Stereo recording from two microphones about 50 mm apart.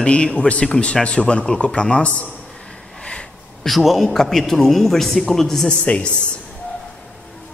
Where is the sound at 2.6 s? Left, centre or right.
Centre.